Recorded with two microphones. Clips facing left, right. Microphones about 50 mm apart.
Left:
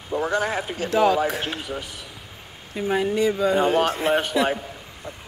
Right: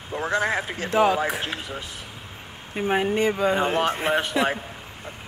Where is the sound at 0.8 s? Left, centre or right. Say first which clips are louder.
Left 1 dB; right.